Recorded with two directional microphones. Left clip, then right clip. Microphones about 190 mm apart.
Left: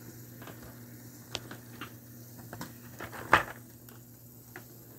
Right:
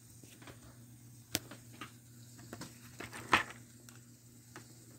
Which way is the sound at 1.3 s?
40° right (ahead or behind).